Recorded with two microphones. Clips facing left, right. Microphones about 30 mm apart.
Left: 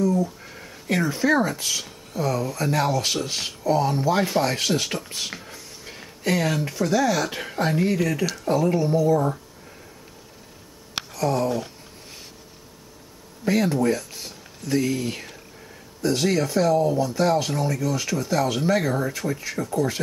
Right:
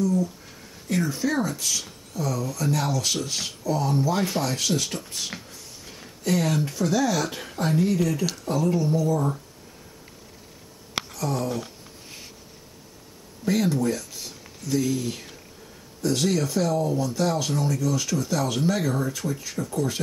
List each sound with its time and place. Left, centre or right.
0.6 s a sound: left
1.0 s speech: left
11.1 s a sound: left
13.5 s speech: left
16.9 s speech: left
17.2 s speech: left
19.2 s speech: left